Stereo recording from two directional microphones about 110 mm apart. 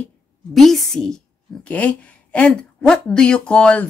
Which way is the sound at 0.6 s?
Centre (ahead or behind).